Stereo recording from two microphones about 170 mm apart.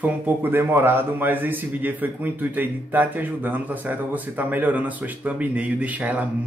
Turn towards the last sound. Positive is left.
turn(degrees=-10)  # may be behind; listen again after turning